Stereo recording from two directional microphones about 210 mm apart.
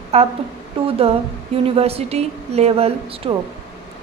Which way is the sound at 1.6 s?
30° right (ahead or behind).